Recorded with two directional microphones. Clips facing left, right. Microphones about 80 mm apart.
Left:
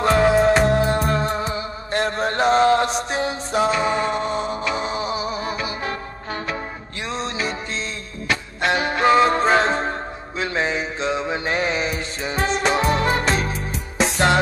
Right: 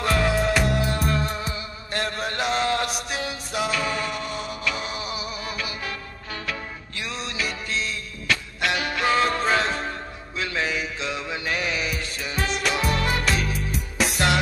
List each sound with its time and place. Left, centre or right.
0.0 s music: left
7.1 s music: left